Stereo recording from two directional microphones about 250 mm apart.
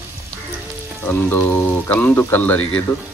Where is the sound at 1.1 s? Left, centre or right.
Centre.